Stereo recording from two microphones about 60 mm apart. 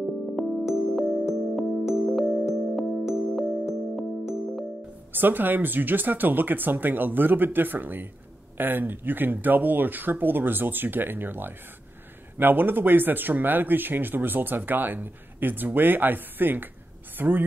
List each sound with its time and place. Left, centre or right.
0.4 s music: centre
5.1 s speech: right